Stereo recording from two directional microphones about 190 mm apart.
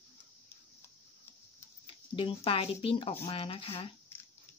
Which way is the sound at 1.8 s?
30° left (ahead or behind).